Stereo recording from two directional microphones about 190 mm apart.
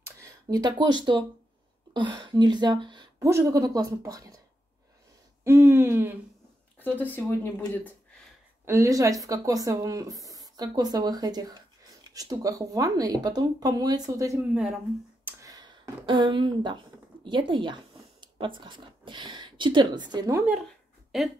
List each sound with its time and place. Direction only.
0.0 s a sound: 15° right (ahead or behind)
0.9 s speech: 25° right (ahead or behind)
5.4 s speech: 15° right (ahead or behind)
6.8 s speech: 10° left (ahead or behind)
8.6 s speech: 15° right (ahead or behind)
14.5 s speech: 5° right (ahead or behind)
15.2 s a sound: 20° right (ahead or behind)
18.2 s speech: 25° right (ahead or behind)
21.1 s speech: centre (ahead or behind)